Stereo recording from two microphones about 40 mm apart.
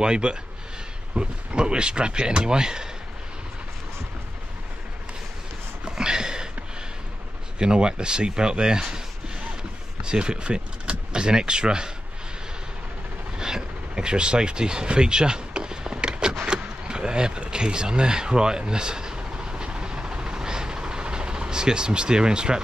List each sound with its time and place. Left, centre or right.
0.0 s speech: right
5.9 s a sound: centre
7.5 s speech: right
10.0 s speech: right
13.4 s vehicle: centre
16.4 s a sound: right